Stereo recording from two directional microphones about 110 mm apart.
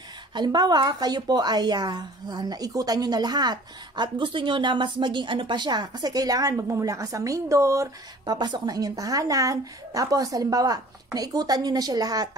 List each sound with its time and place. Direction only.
0.3 s a woman's voice: 45° right (ahead or behind)